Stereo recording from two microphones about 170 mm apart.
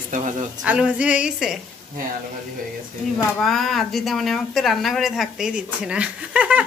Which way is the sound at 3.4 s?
Centre (ahead or behind).